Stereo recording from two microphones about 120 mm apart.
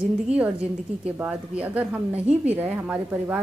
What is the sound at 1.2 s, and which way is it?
A woman's voice, 10° right (ahead or behind).